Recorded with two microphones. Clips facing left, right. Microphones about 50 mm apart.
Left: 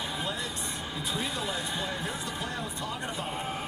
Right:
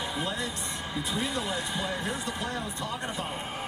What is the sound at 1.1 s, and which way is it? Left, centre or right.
Speech, right.